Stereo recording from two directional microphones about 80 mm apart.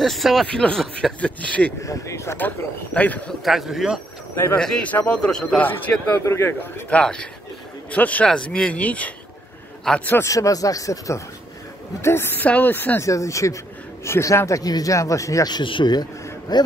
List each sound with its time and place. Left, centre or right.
0.0 s speech: centre
1.8 s speech: left
2.3 s speech: centre
3.4 s speech: centre
4.6 s speech: centre
6.2 s speech: left
6.9 s speech: centre
9.9 s speech: centre
10.2 s speech: left
12.0 s speech: left
13.0 s speech: left
15.4 s speech: left